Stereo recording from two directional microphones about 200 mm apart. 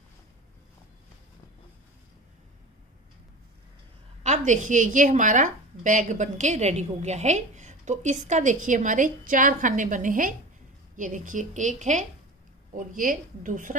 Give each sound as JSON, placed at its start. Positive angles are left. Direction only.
{"t": 4.2, "sound": "a woman's voice", "side_deg": -35}